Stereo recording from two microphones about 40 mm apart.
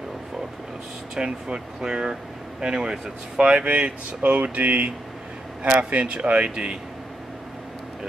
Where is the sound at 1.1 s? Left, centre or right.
Right.